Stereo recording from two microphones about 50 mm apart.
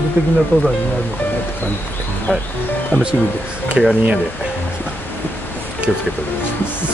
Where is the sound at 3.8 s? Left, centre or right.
Centre.